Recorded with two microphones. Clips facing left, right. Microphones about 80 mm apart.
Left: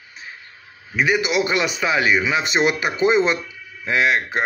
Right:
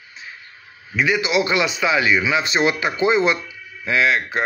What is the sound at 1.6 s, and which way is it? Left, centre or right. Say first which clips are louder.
A man's voice: right 1 dB; left.